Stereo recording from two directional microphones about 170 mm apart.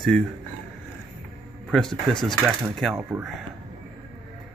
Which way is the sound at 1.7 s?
5° left (ahead or behind).